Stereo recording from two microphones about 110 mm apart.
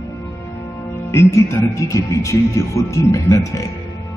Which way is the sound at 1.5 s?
30° left (ahead or behind).